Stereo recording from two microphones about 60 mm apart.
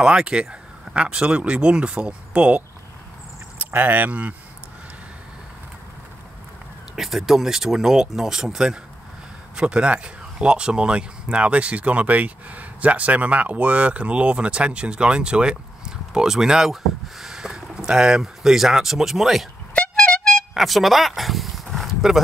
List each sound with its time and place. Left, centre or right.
0.0 s speech: centre
3.5 s speech: right
7.0 s speech: centre
19.7 s vehicle horn: left
20.5 s speech: centre
21.8 s a sound: centre